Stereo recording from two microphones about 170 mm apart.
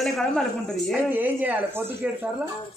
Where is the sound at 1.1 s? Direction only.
10° right (ahead or behind).